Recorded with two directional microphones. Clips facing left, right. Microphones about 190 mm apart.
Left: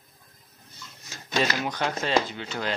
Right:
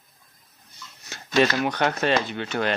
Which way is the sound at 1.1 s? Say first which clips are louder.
Right 6 dB; 65° right (ahead or behind).